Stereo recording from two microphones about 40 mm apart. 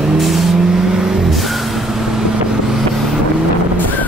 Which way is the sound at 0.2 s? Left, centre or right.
Centre.